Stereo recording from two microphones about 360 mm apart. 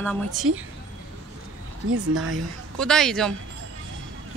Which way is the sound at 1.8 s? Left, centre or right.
Right.